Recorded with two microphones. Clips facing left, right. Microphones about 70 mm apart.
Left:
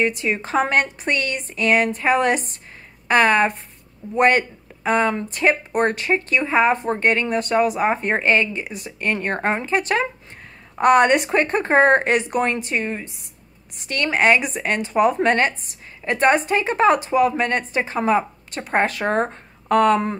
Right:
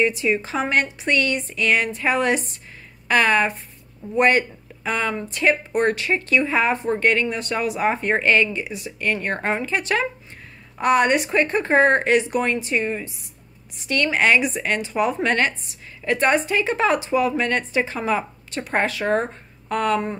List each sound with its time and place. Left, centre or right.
0.0 s speech: left
10.8 s speech: left
19.7 s speech: left